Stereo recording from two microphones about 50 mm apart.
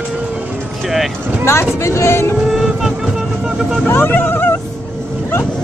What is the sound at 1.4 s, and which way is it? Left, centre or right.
Speech, left.